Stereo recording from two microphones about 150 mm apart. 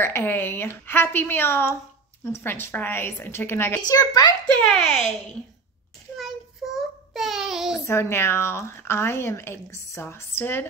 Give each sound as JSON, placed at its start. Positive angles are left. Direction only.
{"t": 0.0, "sound": "a woman's voice", "side_deg": 15}
{"t": 4.6, "sound": "a woman's voice", "side_deg": 5}
{"t": 6.1, "sound": "child singing", "side_deg": 0}
{"t": 7.8, "sound": "a woman's voice", "side_deg": 15}